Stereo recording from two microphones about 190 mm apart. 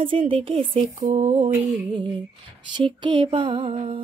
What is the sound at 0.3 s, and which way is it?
Speech, 30° right (ahead or behind).